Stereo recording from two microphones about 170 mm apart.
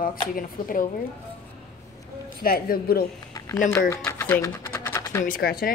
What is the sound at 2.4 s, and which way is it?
Speech, 60° left (ahead or behind).